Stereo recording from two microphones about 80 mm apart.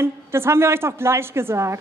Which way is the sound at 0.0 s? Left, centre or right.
Right.